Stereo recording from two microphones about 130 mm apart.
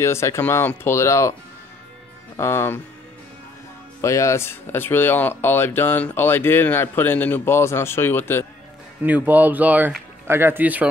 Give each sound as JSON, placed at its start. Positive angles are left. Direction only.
{"t": 0.0, "sound": "speech", "side_deg": 20}
{"t": 2.3, "sound": "speech", "side_deg": 20}
{"t": 4.0, "sound": "speech", "side_deg": 20}
{"t": 9.0, "sound": "speech", "side_deg": -10}